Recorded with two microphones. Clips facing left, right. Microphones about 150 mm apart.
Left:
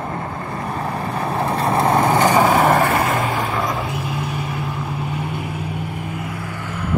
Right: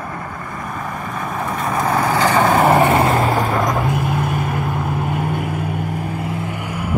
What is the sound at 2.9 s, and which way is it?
Vehicle, 30° right (ahead or behind).